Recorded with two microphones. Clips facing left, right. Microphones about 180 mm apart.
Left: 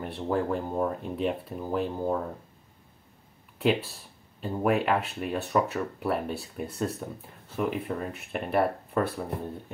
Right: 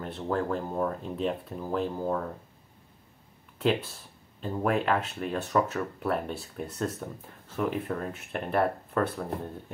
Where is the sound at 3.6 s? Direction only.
5° left (ahead or behind).